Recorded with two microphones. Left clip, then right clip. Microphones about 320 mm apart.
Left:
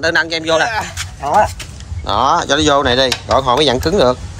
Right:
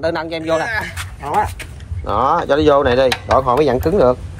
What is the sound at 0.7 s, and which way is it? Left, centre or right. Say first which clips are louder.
Speech: left 2 dB; centre.